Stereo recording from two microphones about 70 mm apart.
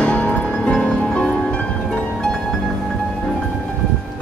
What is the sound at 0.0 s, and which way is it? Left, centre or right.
Music, left.